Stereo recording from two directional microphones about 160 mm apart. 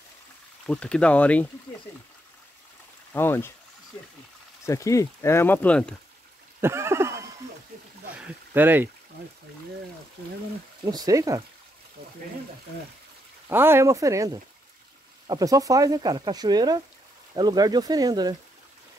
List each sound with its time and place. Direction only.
0.7 s speech: 5° left (ahead or behind)
3.1 s speech: 15° left (ahead or behind)
4.6 s speech: 20° left (ahead or behind)
6.6 s a sound: 15° right (ahead or behind)
8.2 s speech: 10° right (ahead or behind)
10.9 s speech: 20° right (ahead or behind)
13.5 s speech: 15° right (ahead or behind)